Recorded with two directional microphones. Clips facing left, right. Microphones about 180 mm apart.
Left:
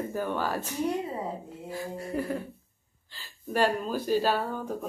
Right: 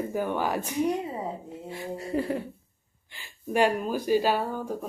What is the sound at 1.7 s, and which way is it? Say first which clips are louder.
Speech: right 2 dB; 25° right (ahead or behind).